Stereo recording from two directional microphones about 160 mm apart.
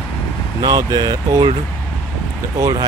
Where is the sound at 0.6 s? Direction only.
25° right (ahead or behind).